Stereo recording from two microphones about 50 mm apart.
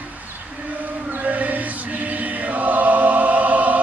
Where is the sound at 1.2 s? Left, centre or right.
Right.